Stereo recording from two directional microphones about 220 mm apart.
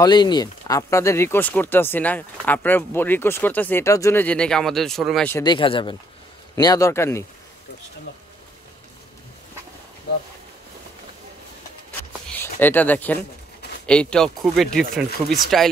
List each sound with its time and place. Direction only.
0.0 s speech: 20° left (ahead or behind); by 5.4 s 5° left (ahead or behind)
5.4 s speech: 20° left (ahead or behind)
12.3 s speech: 10° left (ahead or behind)